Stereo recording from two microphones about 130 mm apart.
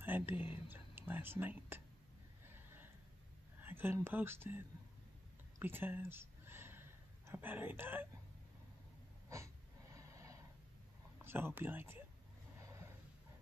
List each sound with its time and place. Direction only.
0.0 s whispering: 15° right (ahead or behind)
0.7 s speech: 15° right (ahead or behind)
2.5 s a sound: 15° right (ahead or behind)
3.6 s speech: 15° right (ahead or behind)
5.6 s a sound: 15° right (ahead or behind)
9.3 s snort: 25° right (ahead or behind)
11.2 s speech: 15° right (ahead or behind)